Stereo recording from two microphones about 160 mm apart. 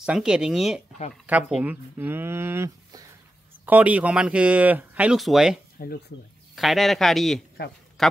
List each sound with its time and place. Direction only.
0.0 s a man's voice: 5° right (ahead or behind)
5.8 s speech: 70° left (ahead or behind)
6.5 s a man's voice: centre (ahead or behind)